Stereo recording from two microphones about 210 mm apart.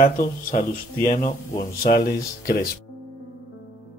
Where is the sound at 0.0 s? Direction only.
40° left (ahead or behind).